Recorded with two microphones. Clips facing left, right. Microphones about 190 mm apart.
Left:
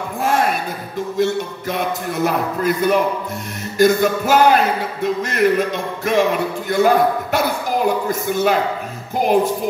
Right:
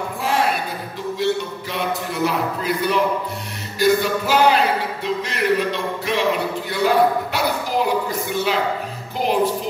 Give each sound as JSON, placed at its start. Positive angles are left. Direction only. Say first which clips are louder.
{"t": 0.2, "sound": "a sound", "louder": "left 3 dB", "side_deg": 50}
{"t": 1.1, "sound": "music", "louder": "left 2 dB", "side_deg": 50}
{"t": 2.2, "sound": "speech", "louder": "left 3 dB", "side_deg": 50}